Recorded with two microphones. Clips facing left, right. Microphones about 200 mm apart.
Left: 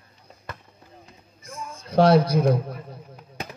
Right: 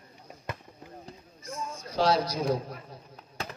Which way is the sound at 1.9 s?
55° left (ahead or behind).